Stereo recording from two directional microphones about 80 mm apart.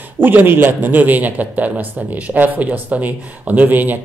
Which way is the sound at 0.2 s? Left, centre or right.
Right.